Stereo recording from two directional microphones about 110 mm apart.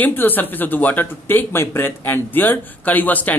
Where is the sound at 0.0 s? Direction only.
15° left (ahead or behind).